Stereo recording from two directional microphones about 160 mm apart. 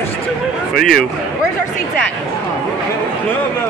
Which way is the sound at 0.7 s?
65° left (ahead or behind).